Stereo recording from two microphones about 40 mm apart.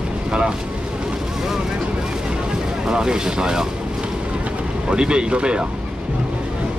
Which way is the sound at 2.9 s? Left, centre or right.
Centre.